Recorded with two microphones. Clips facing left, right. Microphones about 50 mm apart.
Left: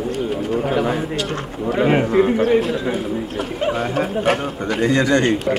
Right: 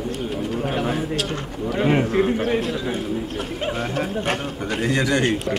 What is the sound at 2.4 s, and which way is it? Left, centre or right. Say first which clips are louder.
Speech: left 6 dB; centre.